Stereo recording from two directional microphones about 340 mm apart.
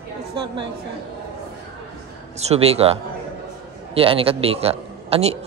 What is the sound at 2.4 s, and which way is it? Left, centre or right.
A man's voice, centre.